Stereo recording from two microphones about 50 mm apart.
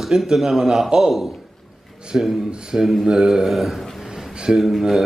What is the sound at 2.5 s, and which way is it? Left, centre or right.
A man's voice, centre.